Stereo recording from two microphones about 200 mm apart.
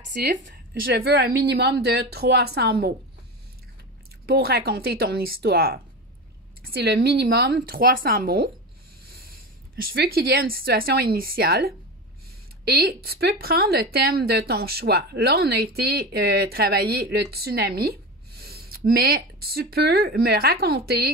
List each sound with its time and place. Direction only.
0.1 s speech: 50° right (ahead or behind)
4.3 s speech: 50° right (ahead or behind)